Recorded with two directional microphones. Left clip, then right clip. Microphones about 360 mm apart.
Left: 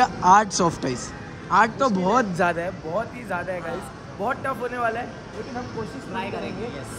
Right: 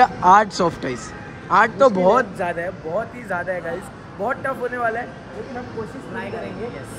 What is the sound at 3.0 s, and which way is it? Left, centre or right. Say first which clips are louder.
Speech: right 3 dB; centre.